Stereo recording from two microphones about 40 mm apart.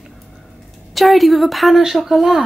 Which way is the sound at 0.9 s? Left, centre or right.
Centre.